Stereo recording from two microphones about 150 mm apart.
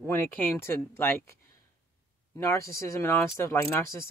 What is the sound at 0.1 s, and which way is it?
Speech, 15° left (ahead or behind).